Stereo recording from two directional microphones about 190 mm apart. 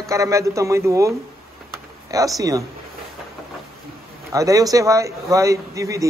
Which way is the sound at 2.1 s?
20° right (ahead or behind).